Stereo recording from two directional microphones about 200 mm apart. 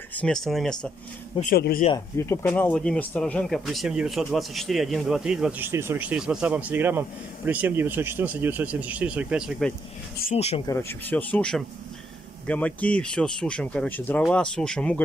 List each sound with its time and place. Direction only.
0.1 s speech: 5° left (ahead or behind)
1.4 s speech: 45° left (ahead or behind)
1.9 s speech: 15° left (ahead or behind); by 9.8 s centre (ahead or behind)
10.3 s speech: 30° left (ahead or behind)
10.7 s speech: 10° left (ahead or behind)